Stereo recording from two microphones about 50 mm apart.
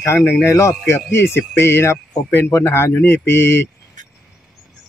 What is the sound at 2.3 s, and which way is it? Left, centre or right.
Speech, left.